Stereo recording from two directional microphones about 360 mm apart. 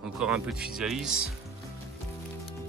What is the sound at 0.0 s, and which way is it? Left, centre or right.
Speech, centre.